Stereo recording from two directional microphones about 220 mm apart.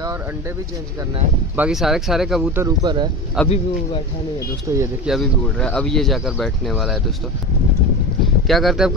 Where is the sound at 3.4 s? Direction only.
25° left (ahead or behind).